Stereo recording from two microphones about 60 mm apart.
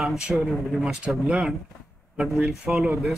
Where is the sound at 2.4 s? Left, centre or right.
Centre.